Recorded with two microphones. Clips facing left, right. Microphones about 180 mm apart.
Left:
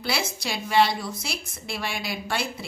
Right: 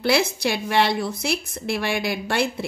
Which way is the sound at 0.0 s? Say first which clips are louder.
Right 8 dB; 60° right (ahead or behind).